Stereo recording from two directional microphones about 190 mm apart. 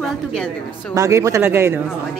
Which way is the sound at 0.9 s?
15° right (ahead or behind).